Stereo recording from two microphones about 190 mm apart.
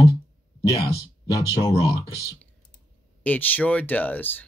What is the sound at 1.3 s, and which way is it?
Speech, 15° left (ahead or behind).